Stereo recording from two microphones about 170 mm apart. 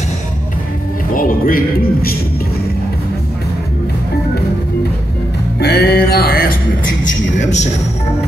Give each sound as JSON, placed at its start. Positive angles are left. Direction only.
{"t": 1.1, "sound": "a man's voice", "side_deg": 55}
{"t": 5.6, "sound": "music", "side_deg": 70}
{"t": 7.1, "sound": "a sound", "side_deg": 45}